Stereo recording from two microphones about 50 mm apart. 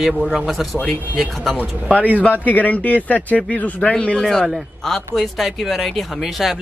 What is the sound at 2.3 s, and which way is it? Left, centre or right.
Speech, left.